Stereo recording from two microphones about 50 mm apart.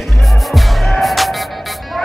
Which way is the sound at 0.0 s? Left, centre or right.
Centre.